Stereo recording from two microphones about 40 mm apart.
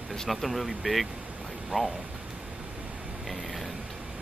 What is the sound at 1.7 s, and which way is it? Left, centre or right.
Speech, right.